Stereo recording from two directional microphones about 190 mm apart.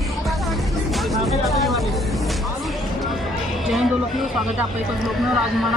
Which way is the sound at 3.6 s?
Centre (ahead or behind).